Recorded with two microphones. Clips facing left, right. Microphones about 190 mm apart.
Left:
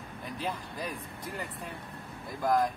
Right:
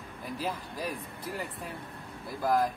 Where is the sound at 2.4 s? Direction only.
5° right (ahead or behind).